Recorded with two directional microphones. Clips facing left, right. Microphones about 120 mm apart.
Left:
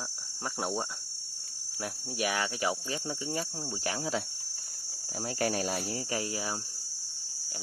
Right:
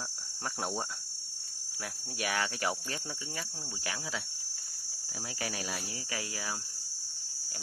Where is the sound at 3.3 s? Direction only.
30° left (ahead or behind).